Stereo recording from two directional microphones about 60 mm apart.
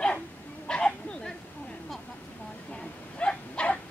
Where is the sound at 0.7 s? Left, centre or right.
Centre.